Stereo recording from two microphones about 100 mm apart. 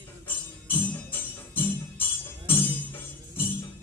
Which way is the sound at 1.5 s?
20° left (ahead or behind).